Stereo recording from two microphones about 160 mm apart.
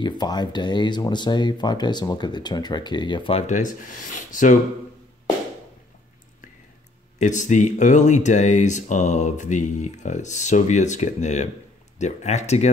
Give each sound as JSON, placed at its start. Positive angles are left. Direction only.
{"t": 0.0, "sound": "speech", "side_deg": 25}
{"t": 3.4, "sound": "speech", "side_deg": 50}
{"t": 7.2, "sound": "speech", "side_deg": 50}